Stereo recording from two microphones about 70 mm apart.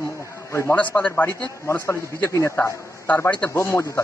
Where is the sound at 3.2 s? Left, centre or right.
Centre.